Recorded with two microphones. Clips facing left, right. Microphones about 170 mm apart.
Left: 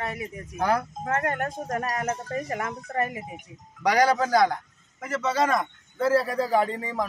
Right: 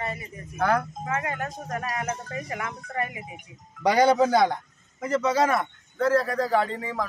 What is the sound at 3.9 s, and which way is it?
Speech, 25° right (ahead or behind).